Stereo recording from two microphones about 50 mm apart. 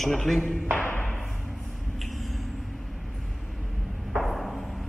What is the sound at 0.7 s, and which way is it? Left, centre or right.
Speech, left.